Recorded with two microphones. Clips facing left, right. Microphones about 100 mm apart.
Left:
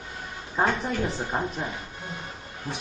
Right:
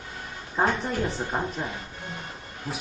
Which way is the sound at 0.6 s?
5° right (ahead or behind).